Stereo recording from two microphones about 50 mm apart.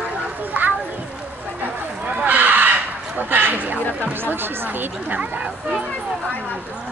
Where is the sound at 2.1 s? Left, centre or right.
Right.